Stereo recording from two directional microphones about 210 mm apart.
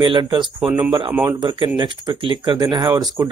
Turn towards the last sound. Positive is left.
turn(degrees=-20)  # may be behind; listen again after turning